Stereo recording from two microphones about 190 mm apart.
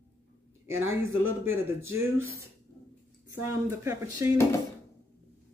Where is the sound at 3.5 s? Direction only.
15° right (ahead or behind).